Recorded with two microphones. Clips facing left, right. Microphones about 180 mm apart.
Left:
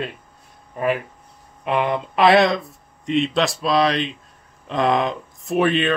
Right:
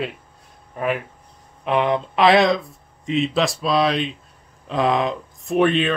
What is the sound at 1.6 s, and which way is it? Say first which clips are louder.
Speech: right 1 dB; centre (ahead or behind).